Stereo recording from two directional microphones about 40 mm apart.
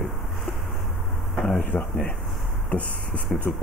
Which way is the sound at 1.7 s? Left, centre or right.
Left.